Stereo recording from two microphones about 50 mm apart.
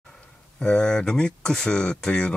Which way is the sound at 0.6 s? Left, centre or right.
Centre.